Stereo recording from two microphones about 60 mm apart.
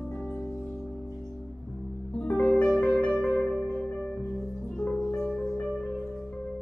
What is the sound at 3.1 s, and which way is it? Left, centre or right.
Music, centre.